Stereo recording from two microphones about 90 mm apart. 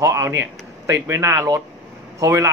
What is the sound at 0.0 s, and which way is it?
Speech, 35° right (ahead or behind).